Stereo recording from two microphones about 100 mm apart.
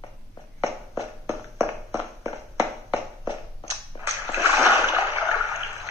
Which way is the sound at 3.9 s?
55° left (ahead or behind).